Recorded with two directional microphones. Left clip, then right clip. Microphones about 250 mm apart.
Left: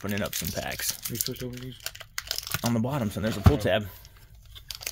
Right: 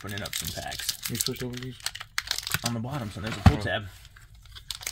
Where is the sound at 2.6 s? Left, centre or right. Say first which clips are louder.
Left 4 dB; left.